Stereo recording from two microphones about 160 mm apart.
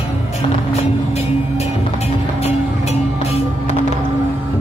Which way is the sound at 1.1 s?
40° left (ahead or behind).